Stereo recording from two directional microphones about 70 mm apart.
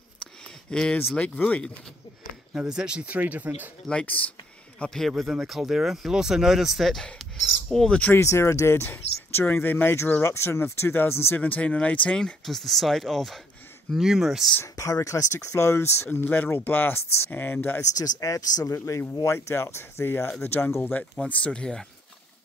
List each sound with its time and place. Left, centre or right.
0.7 s speech: centre
2.5 s speech: centre; by 3.7 s right
3.8 s speech: centre
4.7 s speech: centre
8.1 s speech: left
10.2 s speech: left
11.4 s speech: left
12.4 s speech: centre
14.6 s speech: left
16.1 s speech: left
17.9 s speech: left; by 21.8 s centre